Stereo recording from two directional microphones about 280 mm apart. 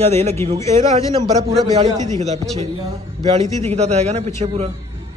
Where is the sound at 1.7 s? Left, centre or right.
Right.